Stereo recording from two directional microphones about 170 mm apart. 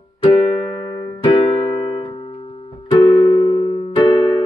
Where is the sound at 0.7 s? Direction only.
25° left (ahead or behind).